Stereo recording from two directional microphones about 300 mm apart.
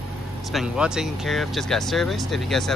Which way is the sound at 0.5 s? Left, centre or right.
Centre.